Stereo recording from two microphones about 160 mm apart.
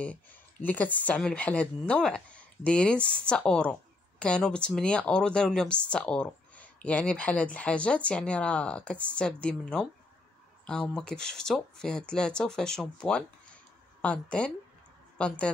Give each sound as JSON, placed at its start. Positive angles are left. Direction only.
{"t": 0.0, "sound": "speech", "side_deg": 10}